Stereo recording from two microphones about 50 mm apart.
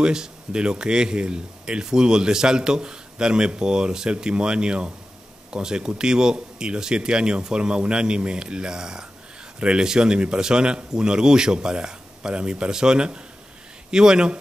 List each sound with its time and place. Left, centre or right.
0.0 s speech: centre